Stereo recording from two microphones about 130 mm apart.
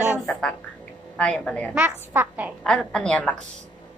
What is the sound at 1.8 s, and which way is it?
Speech, 15° right (ahead or behind).